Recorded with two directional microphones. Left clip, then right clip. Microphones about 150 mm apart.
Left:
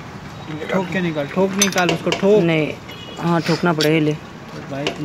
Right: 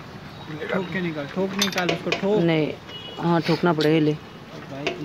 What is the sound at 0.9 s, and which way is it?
Speech, 30° left (ahead or behind).